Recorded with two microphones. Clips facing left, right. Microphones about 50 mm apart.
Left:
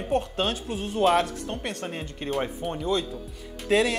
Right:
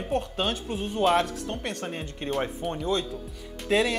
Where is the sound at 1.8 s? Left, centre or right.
Centre.